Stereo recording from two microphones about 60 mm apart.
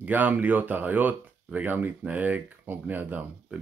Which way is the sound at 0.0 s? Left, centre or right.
Right.